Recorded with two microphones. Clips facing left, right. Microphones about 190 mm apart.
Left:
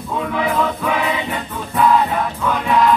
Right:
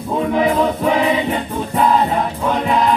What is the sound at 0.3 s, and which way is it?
Music, 30° right (ahead or behind).